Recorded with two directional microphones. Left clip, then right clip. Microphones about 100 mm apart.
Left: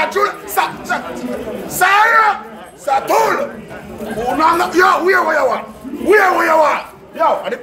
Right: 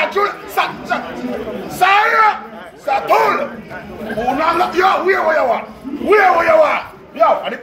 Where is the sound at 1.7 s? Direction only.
45° left (ahead or behind).